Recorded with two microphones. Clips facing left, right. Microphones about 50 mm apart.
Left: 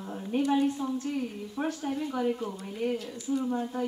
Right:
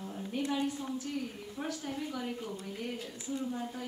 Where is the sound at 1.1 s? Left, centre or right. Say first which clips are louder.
Left 5 dB; left.